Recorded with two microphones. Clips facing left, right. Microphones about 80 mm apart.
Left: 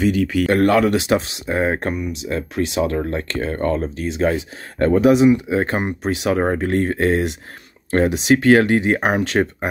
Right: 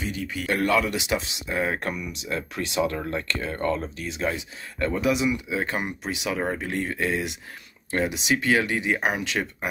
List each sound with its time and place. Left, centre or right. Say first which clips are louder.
0.0 s speech: left 13 dB; left
0.5 s speech: left 6 dB; left